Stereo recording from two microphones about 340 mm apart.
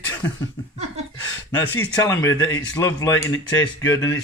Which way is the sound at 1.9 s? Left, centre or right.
Centre.